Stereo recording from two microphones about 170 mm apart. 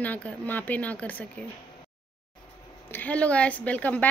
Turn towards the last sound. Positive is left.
turn(degrees=10)  # may be behind; listen again after turning